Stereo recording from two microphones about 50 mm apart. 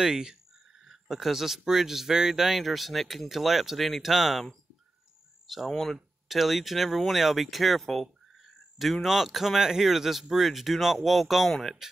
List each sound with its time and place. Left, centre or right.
0.0 s speech: centre
5.5 s speech: centre